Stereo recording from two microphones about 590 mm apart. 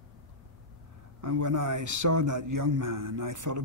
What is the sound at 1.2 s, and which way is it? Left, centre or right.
A man's voice, right.